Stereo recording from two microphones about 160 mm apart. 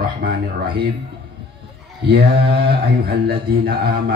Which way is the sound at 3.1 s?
70° right (ahead or behind).